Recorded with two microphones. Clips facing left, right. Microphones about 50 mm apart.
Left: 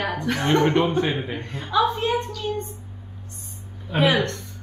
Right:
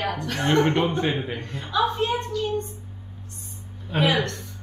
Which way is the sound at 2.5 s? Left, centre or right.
Left.